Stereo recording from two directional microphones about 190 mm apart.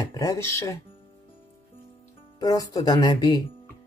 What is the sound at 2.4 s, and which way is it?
Speech, 20° left (ahead or behind).